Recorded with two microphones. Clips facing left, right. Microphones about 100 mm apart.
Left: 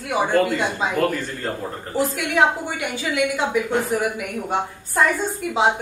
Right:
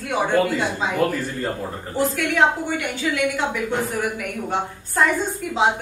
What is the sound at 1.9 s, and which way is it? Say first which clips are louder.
A woman's voice: even; 15° left (ahead or behind).